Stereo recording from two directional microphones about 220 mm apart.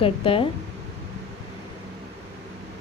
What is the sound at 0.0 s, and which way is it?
Speech, 25° left (ahead or behind).